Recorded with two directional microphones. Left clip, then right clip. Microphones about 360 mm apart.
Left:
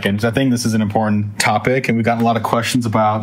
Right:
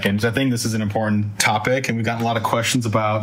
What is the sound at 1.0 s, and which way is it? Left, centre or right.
Speech, left.